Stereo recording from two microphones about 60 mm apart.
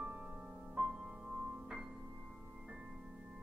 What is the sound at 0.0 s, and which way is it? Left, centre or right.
Music, right.